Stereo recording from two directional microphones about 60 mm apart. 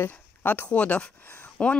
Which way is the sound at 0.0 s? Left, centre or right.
Left.